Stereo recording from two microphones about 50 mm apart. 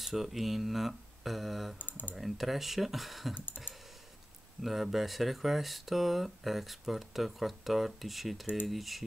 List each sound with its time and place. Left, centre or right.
0.0 s speech: centre
1.8 s speech: left
2.1 s speech: centre
4.6 s speech: centre